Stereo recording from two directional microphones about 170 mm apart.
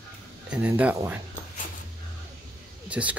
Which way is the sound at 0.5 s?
10° right (ahead or behind).